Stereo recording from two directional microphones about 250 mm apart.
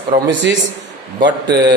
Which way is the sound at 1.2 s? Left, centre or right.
Centre.